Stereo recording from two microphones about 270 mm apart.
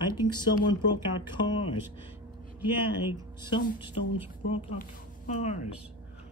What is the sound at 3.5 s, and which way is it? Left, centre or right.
Speech, centre.